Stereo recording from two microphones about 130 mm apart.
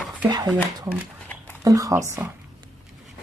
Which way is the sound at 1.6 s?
25° right (ahead or behind).